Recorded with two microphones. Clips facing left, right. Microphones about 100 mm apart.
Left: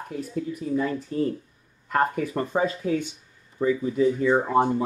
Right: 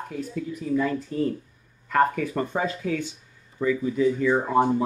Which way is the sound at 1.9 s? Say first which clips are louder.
Right 2 dB; 30° left (ahead or behind).